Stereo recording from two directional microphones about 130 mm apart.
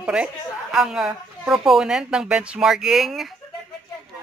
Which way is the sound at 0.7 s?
5° right (ahead or behind).